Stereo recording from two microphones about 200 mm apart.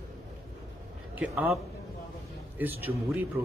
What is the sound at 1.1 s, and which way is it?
A man's voice, 10° right (ahead or behind).